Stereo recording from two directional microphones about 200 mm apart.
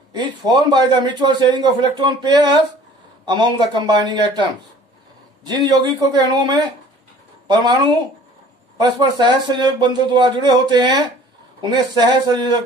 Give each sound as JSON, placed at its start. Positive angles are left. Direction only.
{"t": 0.1, "sound": "a man's voice", "side_deg": -20}
{"t": 5.4, "sound": "a man's voice", "side_deg": -20}